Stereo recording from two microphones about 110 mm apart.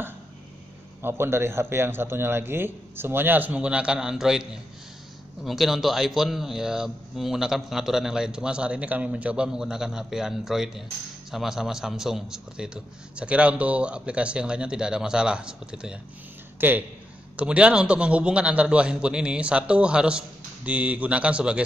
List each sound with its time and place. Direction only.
1.0 s a man's voice: 20° right (ahead or behind)